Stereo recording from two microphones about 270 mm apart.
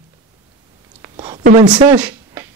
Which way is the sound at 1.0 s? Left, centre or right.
Centre.